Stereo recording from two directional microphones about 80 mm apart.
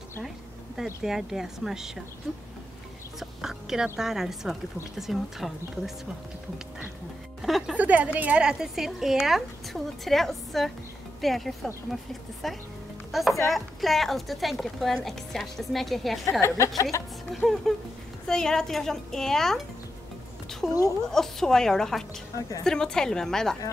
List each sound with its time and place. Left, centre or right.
1.0 s a woman's voice: centre
7.4 s a woman's voice: centre
7.7 s a woman's voice: centre
16.3 s a woman's voice: left
17.3 s a woman's voice: centre
20.6 s a woman's voice: centre